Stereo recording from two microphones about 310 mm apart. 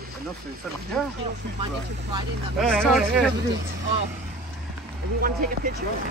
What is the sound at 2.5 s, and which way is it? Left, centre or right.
Speech, centre.